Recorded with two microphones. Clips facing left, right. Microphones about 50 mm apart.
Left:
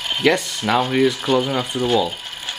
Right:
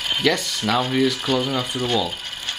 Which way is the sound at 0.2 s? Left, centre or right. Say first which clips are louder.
Left 4 dB; centre.